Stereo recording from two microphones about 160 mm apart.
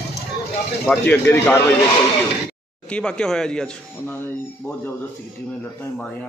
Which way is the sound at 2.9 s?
5° left (ahead or behind).